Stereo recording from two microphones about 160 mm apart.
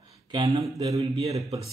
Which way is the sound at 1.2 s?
40° right (ahead or behind).